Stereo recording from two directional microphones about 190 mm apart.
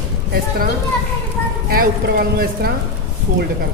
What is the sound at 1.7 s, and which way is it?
Speech, 55° right (ahead or behind).